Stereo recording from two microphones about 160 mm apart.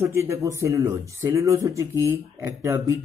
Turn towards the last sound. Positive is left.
turn(degrees=-20)  # may be behind; listen again after turning